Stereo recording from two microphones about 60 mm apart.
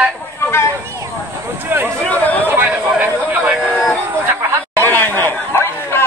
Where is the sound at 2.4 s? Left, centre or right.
Right.